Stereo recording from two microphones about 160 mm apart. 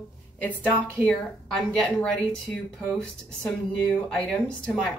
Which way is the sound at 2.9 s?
5° left (ahead or behind).